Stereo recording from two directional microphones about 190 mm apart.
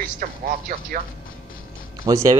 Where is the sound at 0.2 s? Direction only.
50° right (ahead or behind).